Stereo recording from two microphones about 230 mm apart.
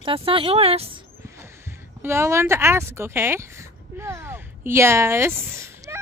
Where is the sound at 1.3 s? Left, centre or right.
Centre.